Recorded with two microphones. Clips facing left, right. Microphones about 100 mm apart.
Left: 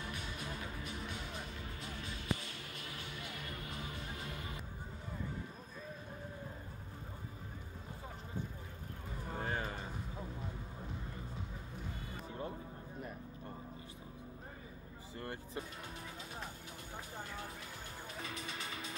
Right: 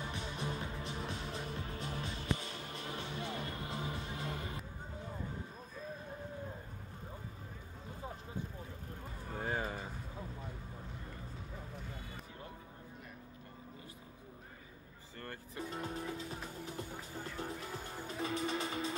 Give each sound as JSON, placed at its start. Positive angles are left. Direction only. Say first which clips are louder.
{"t": 0.1, "sound": "music", "louder": "right 4 dB", "side_deg": -30}
{"t": 9.4, "sound": "a sound", "louder": "right 2 dB", "side_deg": -5}
{"t": 15.1, "sound": "music", "louder": "left 3 dB", "side_deg": 15}
{"t": 15.7, "sound": "music", "louder": "right 8 dB", "side_deg": -35}
{"t": 18.0, "sound": "music", "louder": "right 9 dB", "side_deg": -35}